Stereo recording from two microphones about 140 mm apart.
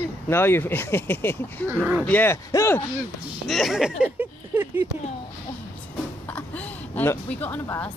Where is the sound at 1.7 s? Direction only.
15° right (ahead or behind).